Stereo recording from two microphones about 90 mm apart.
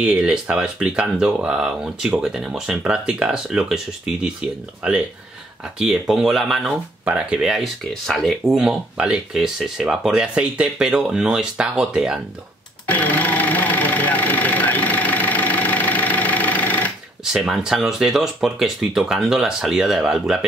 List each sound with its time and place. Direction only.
0.0 s speech: 10° right (ahead or behind)
12.8 s engine: 20° left (ahead or behind)
17.2 s speech: 5° right (ahead or behind)